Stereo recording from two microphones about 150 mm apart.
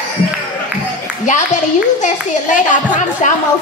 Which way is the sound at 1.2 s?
55° left (ahead or behind).